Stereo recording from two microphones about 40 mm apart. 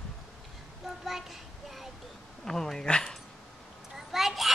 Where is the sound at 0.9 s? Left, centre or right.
Centre.